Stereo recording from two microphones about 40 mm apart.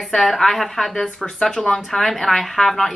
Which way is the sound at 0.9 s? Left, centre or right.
Left.